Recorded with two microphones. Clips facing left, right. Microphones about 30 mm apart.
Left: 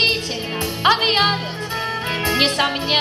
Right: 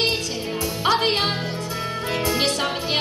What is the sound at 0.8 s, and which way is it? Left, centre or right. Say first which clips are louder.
Music: left 5 dB; left.